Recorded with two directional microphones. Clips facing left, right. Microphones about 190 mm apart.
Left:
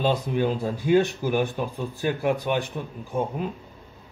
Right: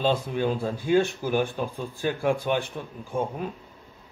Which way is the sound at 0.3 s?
15° left (ahead or behind).